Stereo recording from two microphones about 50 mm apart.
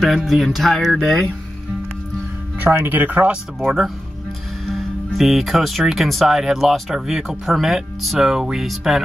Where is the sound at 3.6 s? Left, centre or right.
Centre.